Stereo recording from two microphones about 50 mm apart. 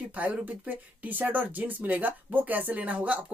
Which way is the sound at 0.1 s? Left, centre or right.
Right.